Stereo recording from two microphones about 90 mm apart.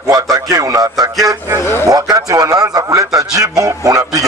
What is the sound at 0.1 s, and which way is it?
A man's voice, 40° right (ahead or behind).